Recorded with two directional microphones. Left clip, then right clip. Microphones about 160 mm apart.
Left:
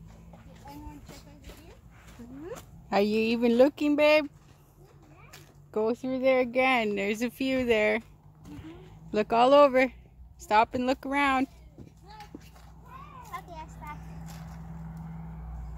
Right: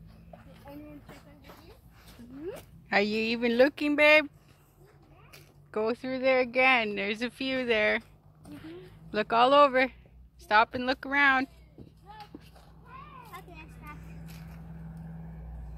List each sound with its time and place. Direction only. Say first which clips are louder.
2.9 s speech: left 1 dB; 15° left (ahead or behind)
5.7 s speech: left 2 dB; 15° left (ahead or behind)